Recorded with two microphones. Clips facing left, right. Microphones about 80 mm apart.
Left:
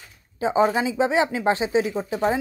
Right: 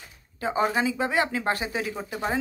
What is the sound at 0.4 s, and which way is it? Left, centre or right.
Speech, centre.